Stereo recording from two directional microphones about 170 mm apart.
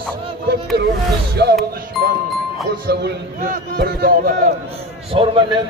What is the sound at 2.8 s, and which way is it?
A man's voice, 65° right (ahead or behind).